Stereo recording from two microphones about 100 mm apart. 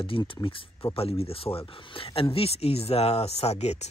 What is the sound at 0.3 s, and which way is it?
Speech, 60° left (ahead or behind).